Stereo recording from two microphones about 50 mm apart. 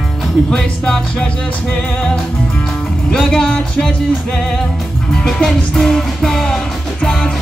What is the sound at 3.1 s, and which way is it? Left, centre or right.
Music, centre.